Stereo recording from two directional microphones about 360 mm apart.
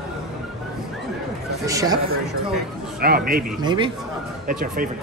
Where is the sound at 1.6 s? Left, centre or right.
Centre.